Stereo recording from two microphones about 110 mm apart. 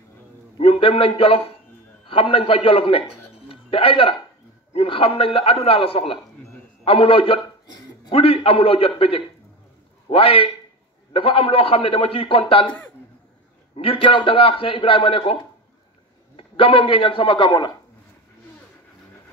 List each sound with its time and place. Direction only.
0.6 s a man's voice: 60° left (ahead or behind)
3.4 s a sound: 55° left (ahead or behind)
4.7 s a man's voice: 55° left (ahead or behind)
13.7 s speech: 55° left (ahead or behind)
16.3 s a man's voice: 60° left (ahead or behind); by 17.7 s 45° left (ahead or behind)